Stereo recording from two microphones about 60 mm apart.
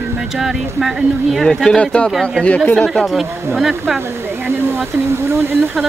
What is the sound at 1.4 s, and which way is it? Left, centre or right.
Speech, centre.